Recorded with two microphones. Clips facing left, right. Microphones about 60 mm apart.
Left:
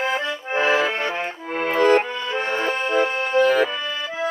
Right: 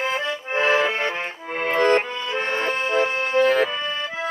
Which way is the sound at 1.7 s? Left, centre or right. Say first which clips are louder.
Left 2 dB; right.